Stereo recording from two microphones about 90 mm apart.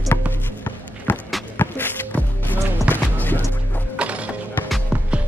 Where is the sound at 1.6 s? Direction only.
20° left (ahead or behind).